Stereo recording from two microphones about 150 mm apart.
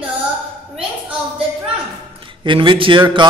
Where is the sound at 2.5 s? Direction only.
35° right (ahead or behind).